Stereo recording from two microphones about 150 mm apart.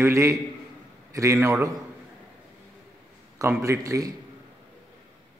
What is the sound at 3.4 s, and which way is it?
Speech, 20° right (ahead or behind).